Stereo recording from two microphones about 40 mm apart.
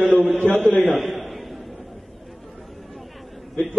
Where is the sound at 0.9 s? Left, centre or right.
Centre.